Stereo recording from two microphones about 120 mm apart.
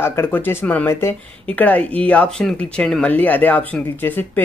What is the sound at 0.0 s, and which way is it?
Speech, 20° left (ahead or behind).